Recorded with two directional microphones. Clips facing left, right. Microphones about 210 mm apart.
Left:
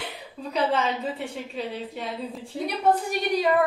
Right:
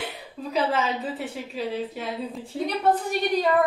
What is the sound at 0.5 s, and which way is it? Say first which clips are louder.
A woman's voice: even; centre (ahead or behind).